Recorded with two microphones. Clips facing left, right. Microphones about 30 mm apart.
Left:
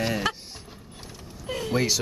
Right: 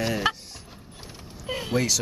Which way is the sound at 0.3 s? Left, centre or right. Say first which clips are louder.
Right 3 dB; centre.